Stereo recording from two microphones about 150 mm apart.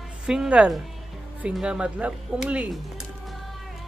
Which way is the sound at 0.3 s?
5° right (ahead or behind).